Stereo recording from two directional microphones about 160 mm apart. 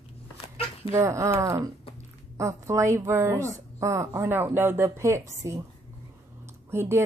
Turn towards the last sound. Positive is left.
turn(degrees=-15)  # may be behind; listen again after turning